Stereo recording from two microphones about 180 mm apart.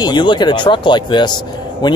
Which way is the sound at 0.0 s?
25° left (ahead or behind).